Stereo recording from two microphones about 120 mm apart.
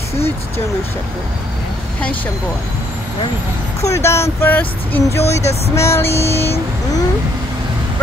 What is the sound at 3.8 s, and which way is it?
Speech, 25° left (ahead or behind).